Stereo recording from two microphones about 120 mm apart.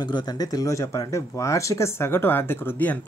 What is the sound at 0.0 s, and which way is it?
Speech, 35° left (ahead or behind).